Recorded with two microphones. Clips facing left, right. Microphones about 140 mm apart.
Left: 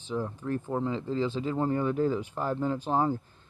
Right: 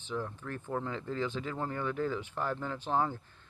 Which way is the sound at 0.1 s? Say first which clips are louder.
Left 6 dB; 20° left (ahead or behind).